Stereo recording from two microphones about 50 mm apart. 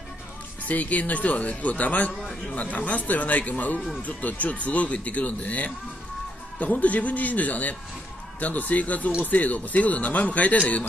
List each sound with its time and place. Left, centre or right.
0.7 s speech: left